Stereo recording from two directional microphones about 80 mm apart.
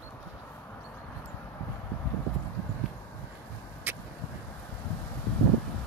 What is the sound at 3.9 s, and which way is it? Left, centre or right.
Vehicle, right.